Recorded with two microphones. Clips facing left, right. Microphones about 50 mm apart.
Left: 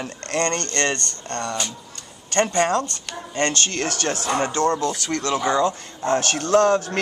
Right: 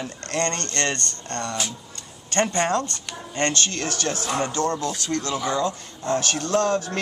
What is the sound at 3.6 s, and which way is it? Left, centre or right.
A man's voice, left.